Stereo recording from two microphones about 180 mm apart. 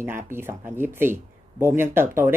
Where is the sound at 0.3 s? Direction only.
10° right (ahead or behind).